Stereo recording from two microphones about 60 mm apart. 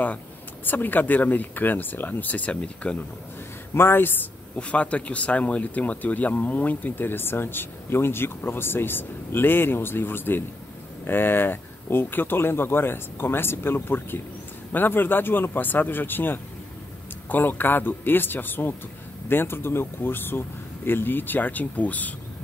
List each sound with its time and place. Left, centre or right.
0.7 s speech: left
3.7 s speech: left
4.6 s speech: left